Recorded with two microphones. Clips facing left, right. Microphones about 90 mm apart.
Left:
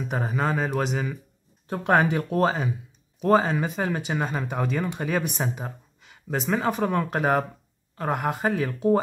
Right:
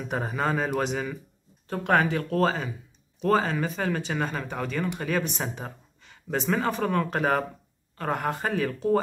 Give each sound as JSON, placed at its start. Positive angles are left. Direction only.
{"t": 0.1, "sound": "a man's voice", "side_deg": 0}
{"t": 1.7, "sound": "speech", "side_deg": 20}